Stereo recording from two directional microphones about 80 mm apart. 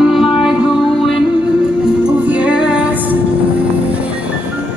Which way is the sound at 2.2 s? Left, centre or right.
Centre.